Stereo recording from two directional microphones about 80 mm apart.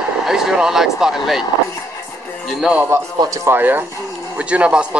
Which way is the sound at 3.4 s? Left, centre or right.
Right.